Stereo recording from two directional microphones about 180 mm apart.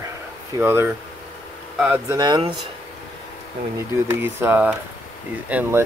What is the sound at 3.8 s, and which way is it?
Speech, 15° right (ahead or behind).